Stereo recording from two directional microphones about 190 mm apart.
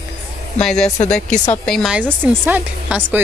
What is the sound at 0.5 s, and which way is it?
Speech, 5° left (ahead or behind).